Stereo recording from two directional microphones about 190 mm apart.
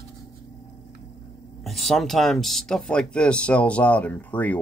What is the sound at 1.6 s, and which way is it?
Speech, centre (ahead or behind).